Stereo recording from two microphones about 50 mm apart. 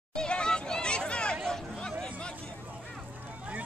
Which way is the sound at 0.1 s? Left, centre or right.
Centre.